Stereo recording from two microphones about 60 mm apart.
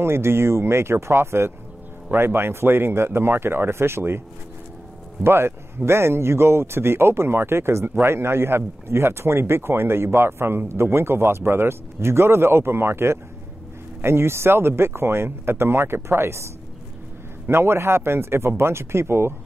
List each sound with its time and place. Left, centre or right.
0.0 s a man's voice: right
5.2 s a man's voice: right
17.5 s a man's voice: right